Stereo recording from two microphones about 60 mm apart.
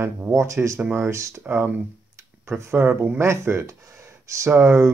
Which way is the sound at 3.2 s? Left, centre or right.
Right.